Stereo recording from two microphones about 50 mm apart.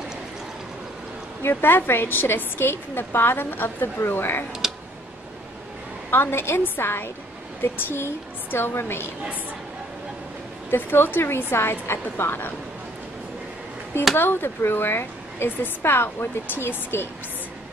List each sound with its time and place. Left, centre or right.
1.4 s a woman's voice: left
6.0 s a woman's voice: left
10.7 s a woman's voice: left
14.1 s a woman's voice: left